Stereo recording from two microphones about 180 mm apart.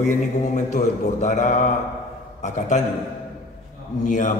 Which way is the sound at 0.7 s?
45° left (ahead or behind).